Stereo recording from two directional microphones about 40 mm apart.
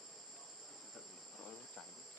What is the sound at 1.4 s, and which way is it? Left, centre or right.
Cricket, left.